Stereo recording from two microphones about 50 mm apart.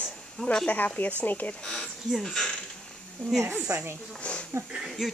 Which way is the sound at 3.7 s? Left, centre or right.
Right.